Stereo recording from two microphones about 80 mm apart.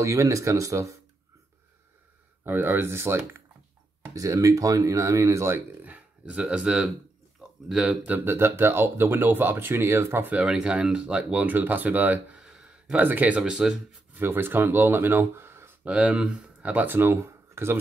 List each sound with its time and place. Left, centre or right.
0.0 s speech: right
2.4 s speech: right
4.1 s speech: right
5.9 s speech: centre
8.3 s speech: right
10.3 s speech: centre
12.4 s a sound: centre
12.9 s speech: right
13.4 s speech: centre
14.1 s speech: right
15.8 s speech: centre; by 17.7 s right